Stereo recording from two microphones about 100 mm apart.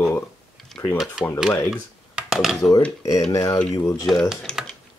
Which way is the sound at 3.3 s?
35° left (ahead or behind).